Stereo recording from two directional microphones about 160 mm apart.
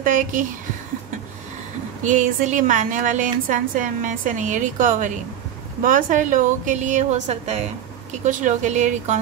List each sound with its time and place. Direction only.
0.0 s speech: 55° right (ahead or behind)
2.0 s a woman's voice: 50° right (ahead or behind)